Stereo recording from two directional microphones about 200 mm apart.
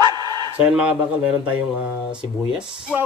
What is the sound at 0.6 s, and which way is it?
Speech, 5° right (ahead or behind).